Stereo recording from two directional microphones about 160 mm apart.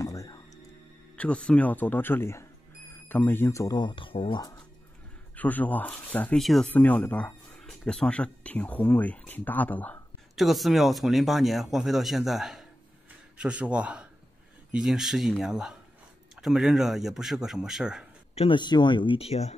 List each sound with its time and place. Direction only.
0.0 s music: 20° left (ahead or behind)
1.1 s speech: 10° left (ahead or behind); by 4.4 s 35° left (ahead or behind)
4.4 s speech: 25° left (ahead or behind)
5.3 s speech: 10° left (ahead or behind)
10.3 s speech: centre (ahead or behind)
18.3 s speech: 35° left (ahead or behind)